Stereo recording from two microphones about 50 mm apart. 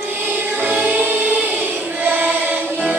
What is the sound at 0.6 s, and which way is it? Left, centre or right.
Music, right.